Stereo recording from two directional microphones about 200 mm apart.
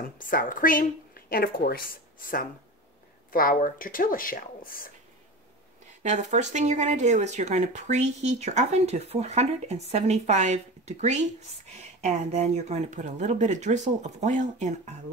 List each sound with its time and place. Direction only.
0.2 s a woman's voice: 45° left (ahead or behind)
6.0 s speech: 35° right (ahead or behind)